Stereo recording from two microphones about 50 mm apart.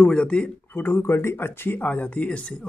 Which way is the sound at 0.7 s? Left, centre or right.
Left.